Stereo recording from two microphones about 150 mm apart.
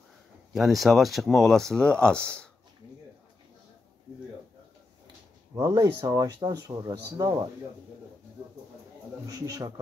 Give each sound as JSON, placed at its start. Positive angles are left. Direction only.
{"t": 0.5, "sound": "speech", "side_deg": 0}
{"t": 5.5, "sound": "speech", "side_deg": -20}
{"t": 9.2, "sound": "speech", "side_deg": -25}